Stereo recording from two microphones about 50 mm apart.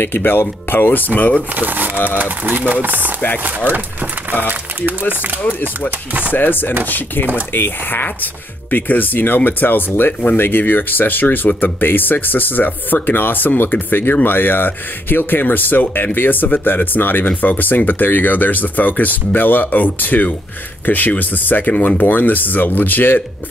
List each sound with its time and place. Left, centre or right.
0.0 s speech: left
1.5 s speech: right
5.9 s speech: right
6.3 s speech: left